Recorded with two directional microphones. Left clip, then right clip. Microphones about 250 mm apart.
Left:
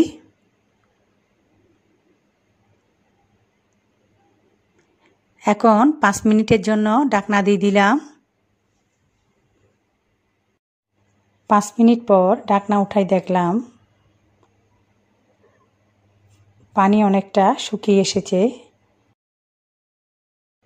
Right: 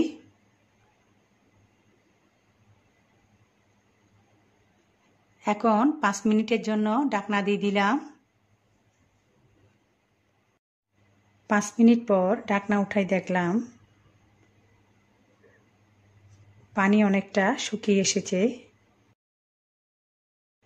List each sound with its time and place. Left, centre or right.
5.4 s a woman's voice: left
11.4 s a woman's voice: centre
16.7 s a woman's voice: centre